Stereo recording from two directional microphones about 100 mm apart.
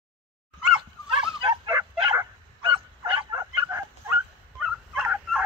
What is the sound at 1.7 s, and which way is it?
Bow-wow, 40° right (ahead or behind).